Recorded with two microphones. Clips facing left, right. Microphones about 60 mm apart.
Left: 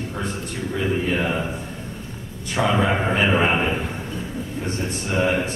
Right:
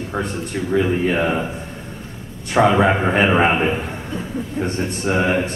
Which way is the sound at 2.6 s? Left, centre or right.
Right.